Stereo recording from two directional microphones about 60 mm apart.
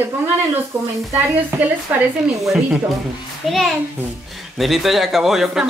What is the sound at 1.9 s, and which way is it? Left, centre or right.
Speech, right.